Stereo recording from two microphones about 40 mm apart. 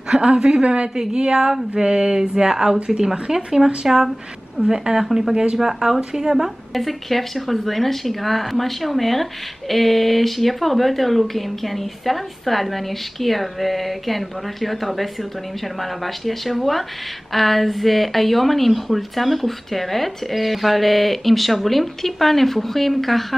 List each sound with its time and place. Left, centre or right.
0.1 s a woman's voice: right
0.9 s speech: centre
6.7 s speech: centre